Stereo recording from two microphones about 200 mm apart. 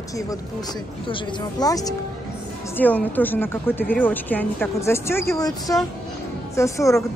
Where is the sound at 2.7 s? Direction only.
10° left (ahead or behind).